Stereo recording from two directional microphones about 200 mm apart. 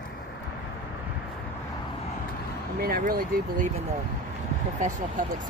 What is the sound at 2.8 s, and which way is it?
Speech, 45° right (ahead or behind).